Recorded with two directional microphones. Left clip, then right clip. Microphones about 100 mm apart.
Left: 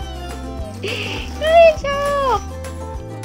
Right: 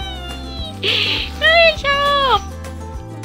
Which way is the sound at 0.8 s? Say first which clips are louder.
Right 8 dB; centre (ahead or behind).